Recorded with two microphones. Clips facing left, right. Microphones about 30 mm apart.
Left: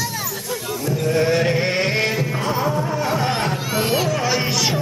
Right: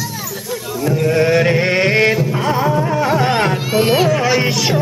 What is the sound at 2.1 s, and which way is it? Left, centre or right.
Music, centre.